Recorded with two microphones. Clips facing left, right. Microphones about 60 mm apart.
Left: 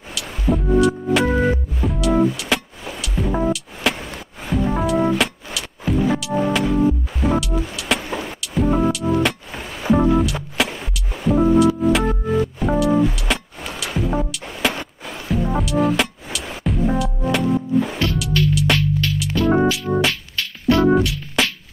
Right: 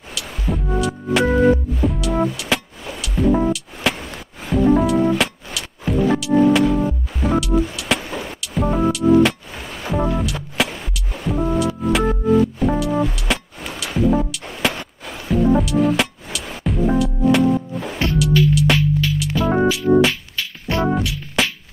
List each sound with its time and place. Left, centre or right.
0.1 s music: centre
20.7 s music: right
21.0 s music: centre